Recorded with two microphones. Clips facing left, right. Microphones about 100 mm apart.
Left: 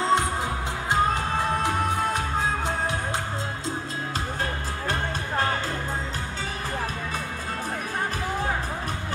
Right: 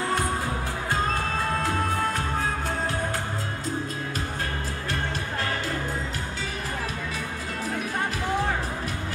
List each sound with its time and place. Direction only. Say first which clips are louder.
0.0 s music: left 3 dB; 20° left (ahead or behind)